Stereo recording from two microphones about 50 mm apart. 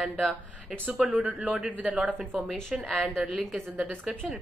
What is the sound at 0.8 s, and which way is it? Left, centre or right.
Speech, right.